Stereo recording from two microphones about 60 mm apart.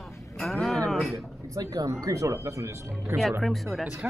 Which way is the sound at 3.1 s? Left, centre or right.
Right.